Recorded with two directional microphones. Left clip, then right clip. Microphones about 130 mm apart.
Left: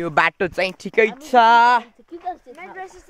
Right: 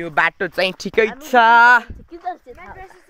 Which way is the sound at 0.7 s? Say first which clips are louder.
Even; 15° right (ahead or behind).